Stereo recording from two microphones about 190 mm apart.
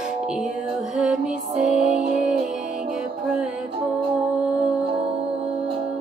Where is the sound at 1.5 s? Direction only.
40° right (ahead or behind).